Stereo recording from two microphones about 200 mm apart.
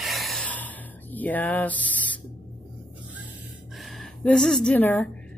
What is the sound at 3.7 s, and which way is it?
Speech, centre (ahead or behind).